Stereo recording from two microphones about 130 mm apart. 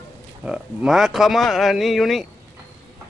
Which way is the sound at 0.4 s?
5° right (ahead or behind).